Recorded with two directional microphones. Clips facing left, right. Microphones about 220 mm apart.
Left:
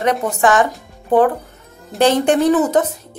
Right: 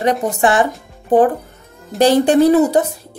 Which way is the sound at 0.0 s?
35° right (ahead or behind).